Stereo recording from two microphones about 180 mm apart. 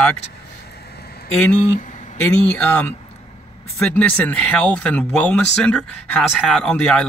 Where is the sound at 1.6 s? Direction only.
45° left (ahead or behind).